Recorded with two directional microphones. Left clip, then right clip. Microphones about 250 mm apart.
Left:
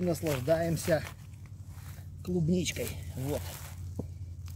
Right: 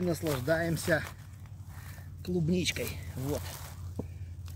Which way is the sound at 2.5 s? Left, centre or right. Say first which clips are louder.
Right 2 dB; left.